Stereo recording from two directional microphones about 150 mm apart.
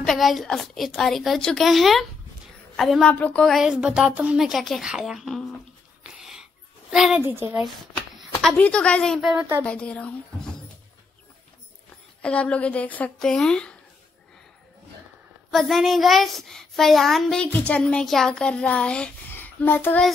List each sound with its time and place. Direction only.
0.0 s a child's voice: centre (ahead or behind)
6.0 s dog: centre (ahead or behind)
6.9 s a child's voice: 5° right (ahead or behind)
7.2 s speech: 15° right (ahead or behind)
8.2 s speech: centre (ahead or behind)
9.4 s speech: 20° right (ahead or behind)
9.7 s speech: 10° left (ahead or behind)
12.2 s speech: 10° left (ahead or behind)
15.5 s a child's voice: centre (ahead or behind)